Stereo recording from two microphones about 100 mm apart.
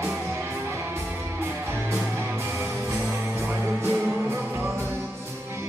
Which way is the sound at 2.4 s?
25° right (ahead or behind).